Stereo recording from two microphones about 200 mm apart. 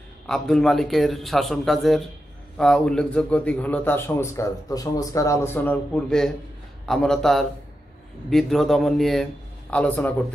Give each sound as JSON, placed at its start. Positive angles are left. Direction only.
{"t": 0.3, "sound": "a man's voice", "side_deg": 5}